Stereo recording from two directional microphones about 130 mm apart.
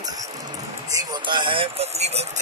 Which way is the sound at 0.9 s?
30° right (ahead or behind).